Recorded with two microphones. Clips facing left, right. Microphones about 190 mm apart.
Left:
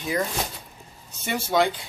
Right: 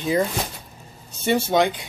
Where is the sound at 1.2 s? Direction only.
25° right (ahead or behind).